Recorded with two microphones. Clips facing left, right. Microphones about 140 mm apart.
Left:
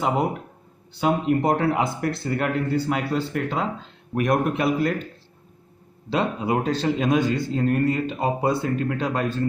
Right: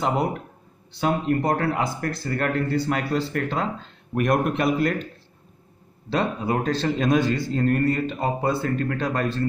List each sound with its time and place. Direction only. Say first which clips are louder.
0.0 s a man's voice: left 1 dB; 10° left (ahead or behind)
6.0 s a man's voice: left 1 dB; 15° left (ahead or behind)